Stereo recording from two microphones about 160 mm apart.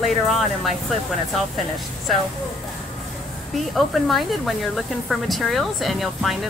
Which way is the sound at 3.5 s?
Centre (ahead or behind).